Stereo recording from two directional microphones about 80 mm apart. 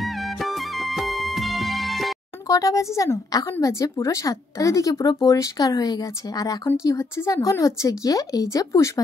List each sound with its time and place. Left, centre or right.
0.0 s music: centre
2.4 s speech: left